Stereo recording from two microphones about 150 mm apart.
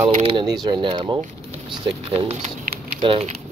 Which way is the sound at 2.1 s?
45° right (ahead or behind).